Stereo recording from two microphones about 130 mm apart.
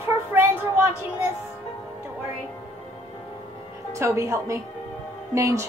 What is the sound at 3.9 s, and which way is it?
A woman's voice, 20° right (ahead or behind).